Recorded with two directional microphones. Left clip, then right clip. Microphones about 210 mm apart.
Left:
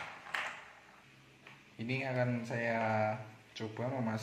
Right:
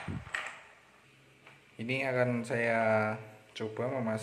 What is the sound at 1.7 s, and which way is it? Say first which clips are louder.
Speech: right 5 dB; 20° right (ahead or behind).